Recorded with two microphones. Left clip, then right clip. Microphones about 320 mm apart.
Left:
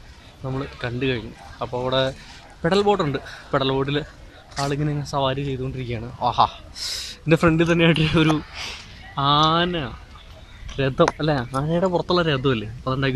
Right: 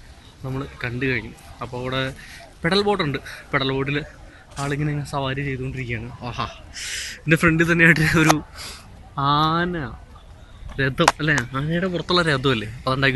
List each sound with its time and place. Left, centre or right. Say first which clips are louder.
0.4 s speech: left 1 dB; centre
12.2 s speech: right 1 dB; centre